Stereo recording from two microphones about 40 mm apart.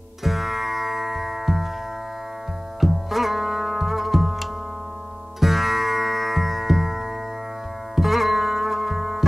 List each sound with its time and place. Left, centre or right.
0.2 s music: centre
2.8 s music: centre
7.9 s sitar: centre